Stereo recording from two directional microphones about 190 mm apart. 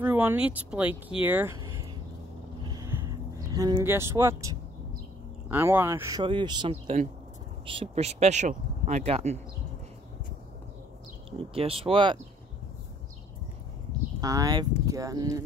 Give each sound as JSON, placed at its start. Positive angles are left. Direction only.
{"t": 0.0, "sound": "speech", "side_deg": -10}
{"t": 2.6, "sound": "a sound", "side_deg": -20}
{"t": 5.5, "sound": "speech", "side_deg": -10}
{"t": 11.2, "sound": "speech", "side_deg": -30}
{"t": 14.2, "sound": "speech", "side_deg": -20}